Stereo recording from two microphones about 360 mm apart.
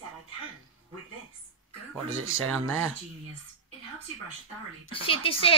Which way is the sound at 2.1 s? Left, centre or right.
Right.